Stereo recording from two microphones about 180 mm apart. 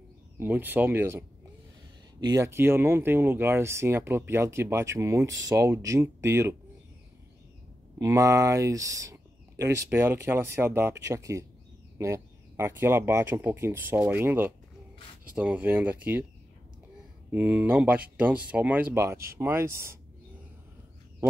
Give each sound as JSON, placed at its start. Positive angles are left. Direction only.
{"t": 0.4, "sound": "speech", "side_deg": -10}
{"t": 8.0, "sound": "speech", "side_deg": -15}
{"t": 17.3, "sound": "speech", "side_deg": -10}